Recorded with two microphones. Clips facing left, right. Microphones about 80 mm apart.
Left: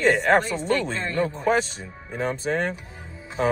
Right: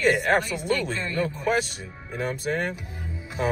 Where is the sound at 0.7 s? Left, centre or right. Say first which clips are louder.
Left 2 dB; left.